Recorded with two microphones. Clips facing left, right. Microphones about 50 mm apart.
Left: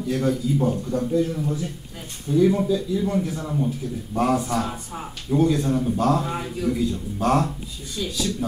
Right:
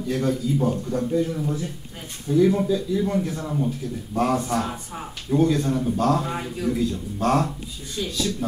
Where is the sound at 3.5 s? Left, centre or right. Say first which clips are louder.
Even; centre.